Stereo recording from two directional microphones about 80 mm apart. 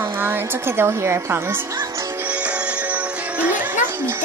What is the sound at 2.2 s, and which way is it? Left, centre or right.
Music, centre.